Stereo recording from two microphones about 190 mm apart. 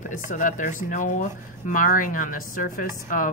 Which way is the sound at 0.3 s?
45° left (ahead or behind).